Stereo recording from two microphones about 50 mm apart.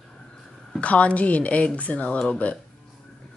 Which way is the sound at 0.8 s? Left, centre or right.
Left.